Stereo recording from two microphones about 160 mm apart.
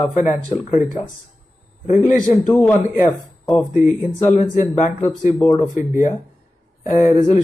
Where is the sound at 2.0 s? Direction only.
55° left (ahead or behind).